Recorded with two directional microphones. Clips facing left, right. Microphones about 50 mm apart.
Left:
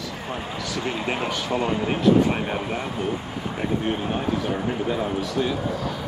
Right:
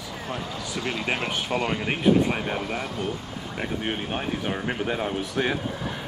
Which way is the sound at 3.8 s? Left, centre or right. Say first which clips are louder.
Left 4 dB; right.